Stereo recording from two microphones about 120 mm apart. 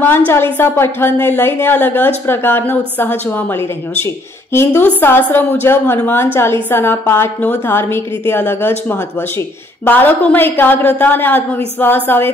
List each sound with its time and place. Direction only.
0.3 s a woman's voice: 20° left (ahead or behind)